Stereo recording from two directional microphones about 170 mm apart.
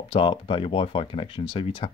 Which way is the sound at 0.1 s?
30° left (ahead or behind).